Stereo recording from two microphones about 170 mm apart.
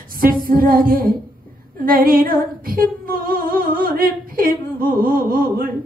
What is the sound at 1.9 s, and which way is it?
Female singing, 55° right (ahead or behind).